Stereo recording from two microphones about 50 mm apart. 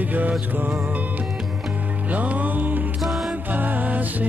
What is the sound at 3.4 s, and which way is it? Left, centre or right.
Music, right.